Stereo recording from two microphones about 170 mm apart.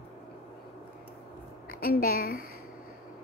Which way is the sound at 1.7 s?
60° left (ahead or behind).